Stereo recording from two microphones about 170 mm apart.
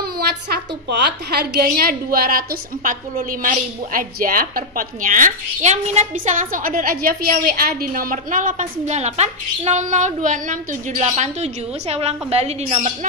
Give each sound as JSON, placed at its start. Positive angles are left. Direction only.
{"t": 0.0, "sound": "a woman's voice", "side_deg": -65}